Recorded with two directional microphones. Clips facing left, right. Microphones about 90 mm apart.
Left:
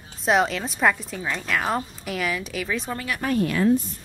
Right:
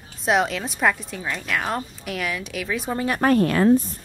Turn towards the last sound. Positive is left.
turn(degrees=-45)  # may be behind; listen again after turning